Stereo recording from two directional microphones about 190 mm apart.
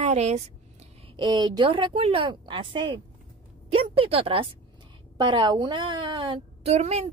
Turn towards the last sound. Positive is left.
turn(degrees=-35)  # may be behind; listen again after turning